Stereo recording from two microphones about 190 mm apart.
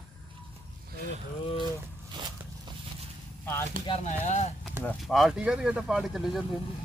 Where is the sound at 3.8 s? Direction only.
35° left (ahead or behind).